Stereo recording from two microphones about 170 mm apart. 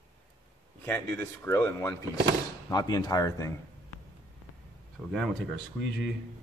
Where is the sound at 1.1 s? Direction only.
15° left (ahead or behind).